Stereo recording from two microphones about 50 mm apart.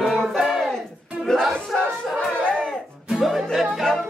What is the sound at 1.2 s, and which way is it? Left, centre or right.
Battle cry, centre.